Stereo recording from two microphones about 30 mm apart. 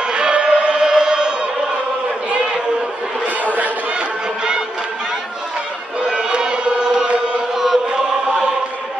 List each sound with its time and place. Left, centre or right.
0.0 s choir: right
3.4 s chatter: right
6.0 s chant: right
7.5 s chant: centre
7.9 s chant: right